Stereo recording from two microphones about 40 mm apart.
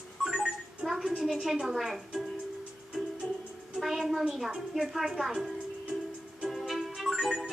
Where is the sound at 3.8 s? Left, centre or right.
Centre.